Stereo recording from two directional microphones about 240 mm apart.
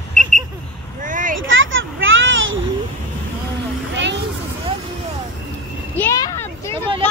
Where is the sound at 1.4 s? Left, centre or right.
Right.